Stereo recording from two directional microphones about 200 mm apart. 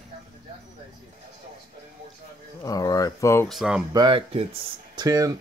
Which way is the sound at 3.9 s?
20° right (ahead or behind).